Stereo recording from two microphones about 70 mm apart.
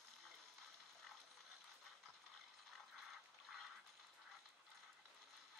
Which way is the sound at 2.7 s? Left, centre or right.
Centre.